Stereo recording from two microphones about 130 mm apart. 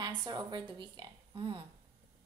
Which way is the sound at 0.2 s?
30° right (ahead or behind).